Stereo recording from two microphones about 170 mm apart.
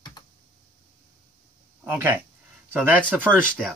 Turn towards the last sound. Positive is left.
turn(degrees=-10)  # may be behind; listen again after turning